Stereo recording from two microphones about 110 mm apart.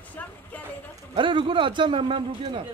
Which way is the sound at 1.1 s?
50° right (ahead or behind).